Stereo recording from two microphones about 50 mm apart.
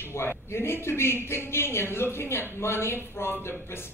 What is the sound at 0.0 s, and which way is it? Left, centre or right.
A man's voice, left.